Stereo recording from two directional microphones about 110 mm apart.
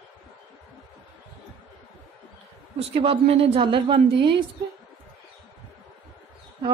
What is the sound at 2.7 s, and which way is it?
A woman's voice, 60° right (ahead or behind).